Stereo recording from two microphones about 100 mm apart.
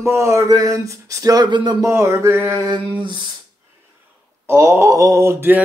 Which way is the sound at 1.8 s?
30° right (ahead or behind).